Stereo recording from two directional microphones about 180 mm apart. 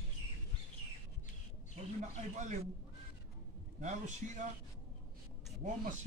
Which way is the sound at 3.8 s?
40° right (ahead or behind).